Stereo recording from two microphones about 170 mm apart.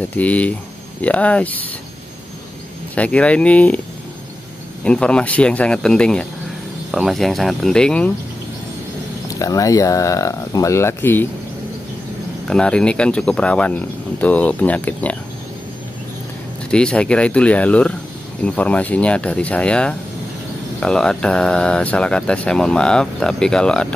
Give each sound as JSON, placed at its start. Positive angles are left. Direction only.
{"t": 0.1, "sound": "speech", "side_deg": 10}
{"t": 2.9, "sound": "speech", "side_deg": 5}
{"t": 4.8, "sound": "speech", "side_deg": 5}
{"t": 9.3, "sound": "speech", "side_deg": 20}
{"t": 12.4, "sound": "speech", "side_deg": 5}
{"t": 16.7, "sound": "speech", "side_deg": 5}